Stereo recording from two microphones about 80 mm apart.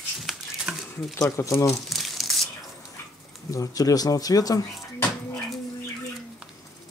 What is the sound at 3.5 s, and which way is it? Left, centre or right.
Speech, left.